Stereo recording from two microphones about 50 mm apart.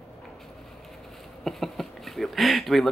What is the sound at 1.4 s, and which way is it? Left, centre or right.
Speech, centre.